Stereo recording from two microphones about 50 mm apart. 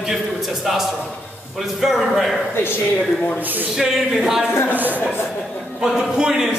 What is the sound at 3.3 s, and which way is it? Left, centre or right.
Speech, right.